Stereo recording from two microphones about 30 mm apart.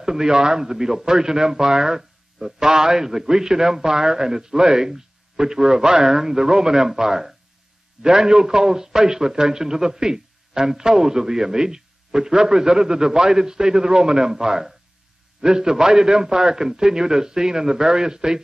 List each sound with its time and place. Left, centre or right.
0.0 s a man's voice: right